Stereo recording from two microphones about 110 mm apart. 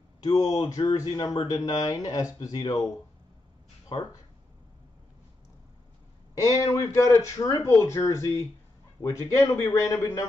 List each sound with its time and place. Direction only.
0.2 s speech: 35° left (ahead or behind)
3.9 s speech: 50° left (ahead or behind)
6.3 s speech: 30° left (ahead or behind)